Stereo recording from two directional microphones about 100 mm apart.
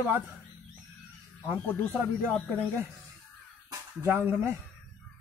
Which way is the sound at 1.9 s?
20° right (ahead or behind).